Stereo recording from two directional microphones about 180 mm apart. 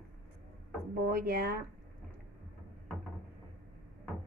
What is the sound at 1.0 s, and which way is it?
Speech, 55° right (ahead or behind).